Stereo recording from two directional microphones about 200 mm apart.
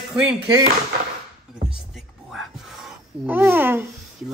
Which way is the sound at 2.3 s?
5° right (ahead or behind).